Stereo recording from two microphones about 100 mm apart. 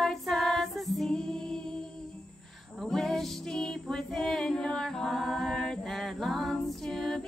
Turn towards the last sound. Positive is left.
turn(degrees=5)  # may be behind; listen again after turning